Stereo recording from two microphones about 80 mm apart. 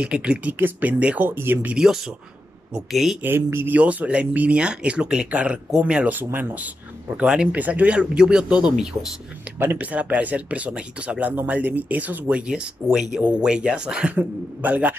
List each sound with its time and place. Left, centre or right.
0.0 s speech: centre
1.8 s speech: centre
3.2 s speech: right
3.7 s speech: centre
9.6 s speech: right